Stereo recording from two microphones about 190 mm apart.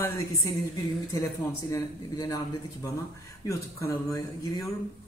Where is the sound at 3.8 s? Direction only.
15° left (ahead or behind).